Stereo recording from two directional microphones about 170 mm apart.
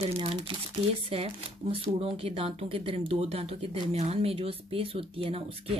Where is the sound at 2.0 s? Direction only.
35° right (ahead or behind).